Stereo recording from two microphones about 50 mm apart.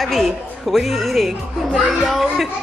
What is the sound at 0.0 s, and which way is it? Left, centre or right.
A woman's voice, centre.